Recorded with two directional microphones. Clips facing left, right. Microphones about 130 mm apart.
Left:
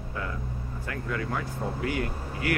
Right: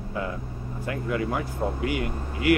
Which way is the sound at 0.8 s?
20° right (ahead or behind).